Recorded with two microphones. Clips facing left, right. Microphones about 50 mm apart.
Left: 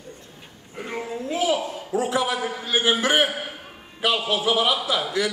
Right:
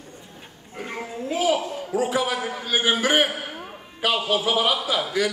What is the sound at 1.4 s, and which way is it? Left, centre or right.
A man's voice, centre.